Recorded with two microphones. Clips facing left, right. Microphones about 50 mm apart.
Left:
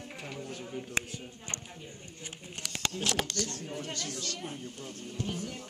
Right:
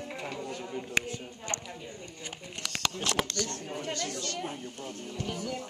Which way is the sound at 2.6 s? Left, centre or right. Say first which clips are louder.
Right 3 dB; right.